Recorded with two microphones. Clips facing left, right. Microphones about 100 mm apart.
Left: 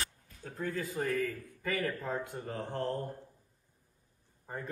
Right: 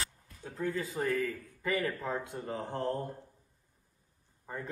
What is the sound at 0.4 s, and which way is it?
Speech, 30° right (ahead or behind).